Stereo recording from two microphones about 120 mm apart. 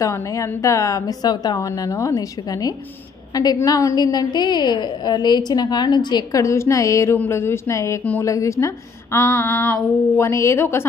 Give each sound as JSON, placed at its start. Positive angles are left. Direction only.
{"t": 0.0, "sound": "a woman's voice", "side_deg": 25}
{"t": 6.4, "sound": "a woman's voice", "side_deg": 25}